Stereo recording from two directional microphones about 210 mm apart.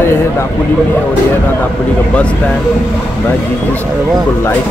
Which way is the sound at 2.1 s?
5° left (ahead or behind).